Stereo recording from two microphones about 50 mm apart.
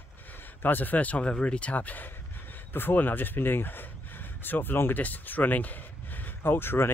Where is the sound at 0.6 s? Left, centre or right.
Left.